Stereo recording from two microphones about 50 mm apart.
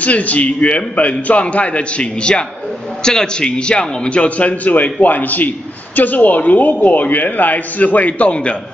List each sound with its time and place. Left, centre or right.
0.0 s a man's voice: left